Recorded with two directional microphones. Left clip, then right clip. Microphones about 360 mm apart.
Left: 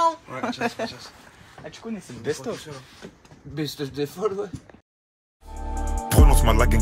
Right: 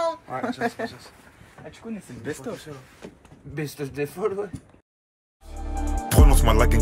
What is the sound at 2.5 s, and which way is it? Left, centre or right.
Speech, left.